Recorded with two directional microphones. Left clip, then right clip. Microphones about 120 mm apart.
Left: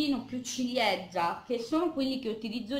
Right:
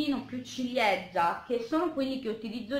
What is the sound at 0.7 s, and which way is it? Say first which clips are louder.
A woman's voice: right 2 dB; 20° left (ahead or behind).